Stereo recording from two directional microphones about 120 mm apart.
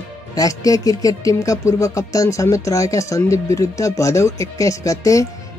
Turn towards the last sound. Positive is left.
turn(degrees=25)  # may be behind; listen again after turning